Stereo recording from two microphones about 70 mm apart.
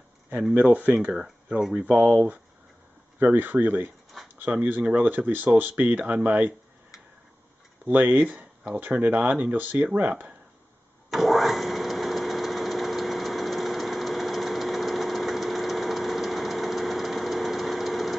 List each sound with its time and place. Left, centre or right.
0.4 s speech: centre
0.7 s speech: centre
1.6 s speech: centre
3.2 s speech: right
7.8 s speech: right
11.1 s engine: centre